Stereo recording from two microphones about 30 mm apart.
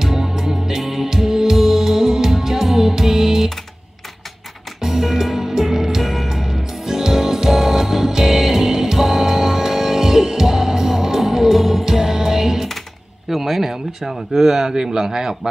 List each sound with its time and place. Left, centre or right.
0.0 s music: centre
4.8 s music: centre
13.3 s speech: centre